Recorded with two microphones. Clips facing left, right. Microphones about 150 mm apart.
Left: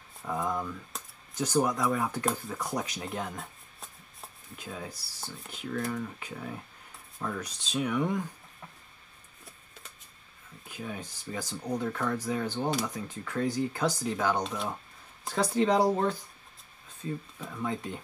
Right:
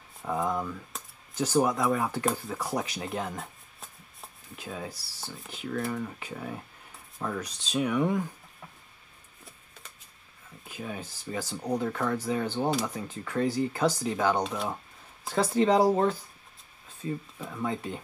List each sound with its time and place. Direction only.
0.3 s speech: 5° right (ahead or behind)
10.7 s speech: 5° right (ahead or behind)
17.4 s speech: 5° right (ahead or behind)